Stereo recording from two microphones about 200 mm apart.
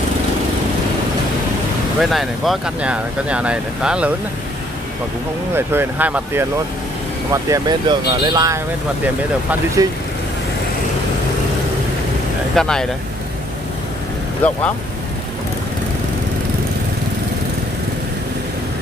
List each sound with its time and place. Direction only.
2.0 s speech: centre (ahead or behind)
5.6 s speech: 10° right (ahead or behind)
7.5 s speech: 20° right (ahead or behind)
12.5 s speech: 5° left (ahead or behind)
14.4 s speech: 5° left (ahead or behind)